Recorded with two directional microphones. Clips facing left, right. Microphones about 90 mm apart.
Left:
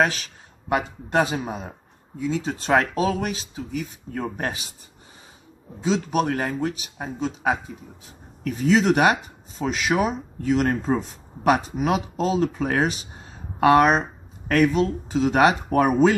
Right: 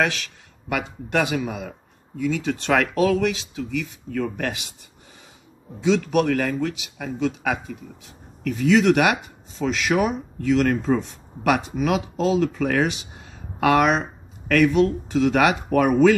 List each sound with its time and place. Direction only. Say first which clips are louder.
0.0 s speech: left 1 dB; 35° left (ahead or behind)
6.0 s speech: right 3 dB; 30° left (ahead or behind)